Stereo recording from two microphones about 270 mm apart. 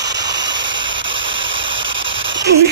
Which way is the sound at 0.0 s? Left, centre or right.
Right.